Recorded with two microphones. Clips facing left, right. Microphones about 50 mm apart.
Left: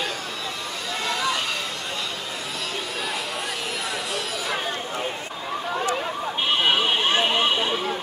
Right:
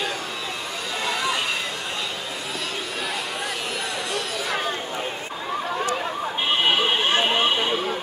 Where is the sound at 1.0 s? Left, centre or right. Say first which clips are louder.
Even; centre.